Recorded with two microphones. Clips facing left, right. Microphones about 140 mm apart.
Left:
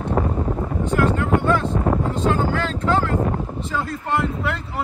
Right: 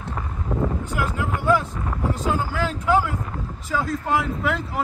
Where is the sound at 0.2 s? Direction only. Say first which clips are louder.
Left 14 dB; 50° left (ahead or behind).